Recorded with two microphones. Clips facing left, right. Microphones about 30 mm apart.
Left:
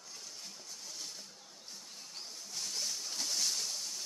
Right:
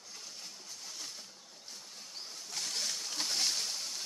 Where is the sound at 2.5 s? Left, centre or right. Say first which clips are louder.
Right 2 dB; right.